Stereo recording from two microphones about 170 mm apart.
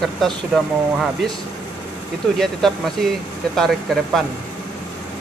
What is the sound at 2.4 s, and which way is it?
Speech, centre (ahead or behind).